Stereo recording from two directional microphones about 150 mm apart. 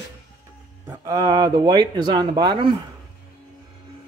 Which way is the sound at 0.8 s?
25° right (ahead or behind).